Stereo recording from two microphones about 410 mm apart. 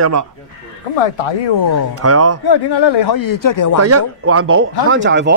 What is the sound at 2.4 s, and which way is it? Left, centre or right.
Speech, left.